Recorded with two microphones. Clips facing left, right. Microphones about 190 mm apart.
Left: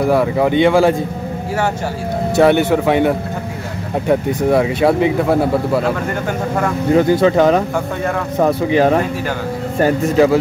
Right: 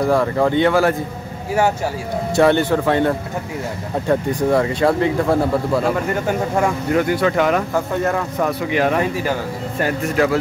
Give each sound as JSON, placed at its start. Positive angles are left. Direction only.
{"t": 0.1, "sound": "speech", "side_deg": 10}
{"t": 2.3, "sound": "speech", "side_deg": 15}
{"t": 7.0, "sound": "speech", "side_deg": 25}
{"t": 7.7, "sound": "speech", "side_deg": 0}
{"t": 8.4, "sound": "speech", "side_deg": 30}